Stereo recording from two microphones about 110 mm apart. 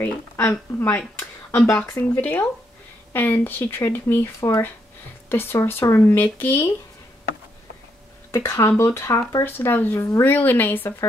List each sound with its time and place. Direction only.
0.0 s speech: 20° left (ahead or behind)
8.3 s speech: 25° left (ahead or behind)